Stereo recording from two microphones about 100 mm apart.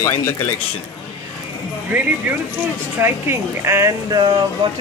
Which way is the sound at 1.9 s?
20° right (ahead or behind).